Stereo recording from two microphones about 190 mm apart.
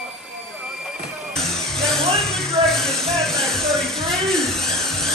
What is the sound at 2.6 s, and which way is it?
Music, centre (ahead or behind).